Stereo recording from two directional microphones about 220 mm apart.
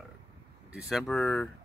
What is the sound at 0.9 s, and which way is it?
Speech, 5° left (ahead or behind).